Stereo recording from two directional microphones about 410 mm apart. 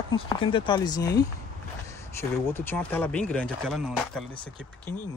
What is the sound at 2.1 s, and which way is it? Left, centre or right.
Speech, centre.